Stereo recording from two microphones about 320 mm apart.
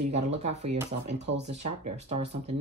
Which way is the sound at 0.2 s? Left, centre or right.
Right.